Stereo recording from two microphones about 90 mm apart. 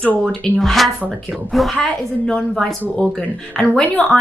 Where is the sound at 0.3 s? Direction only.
5° left (ahead or behind).